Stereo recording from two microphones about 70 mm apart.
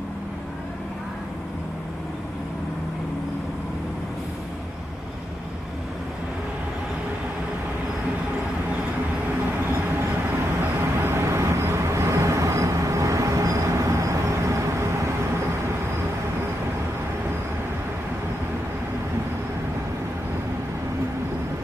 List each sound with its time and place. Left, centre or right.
11.0 s vehicle: right